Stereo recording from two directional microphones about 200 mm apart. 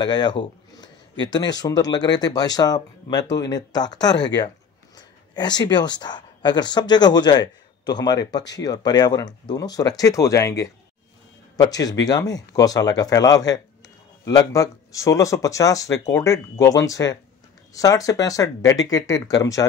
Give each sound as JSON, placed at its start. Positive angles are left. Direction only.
{"t": 0.0, "sound": "speech", "side_deg": 20}